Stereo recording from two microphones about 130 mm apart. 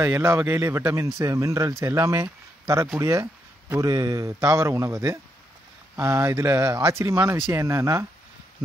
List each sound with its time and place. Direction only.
0.0 s a man's voice: 20° right (ahead or behind)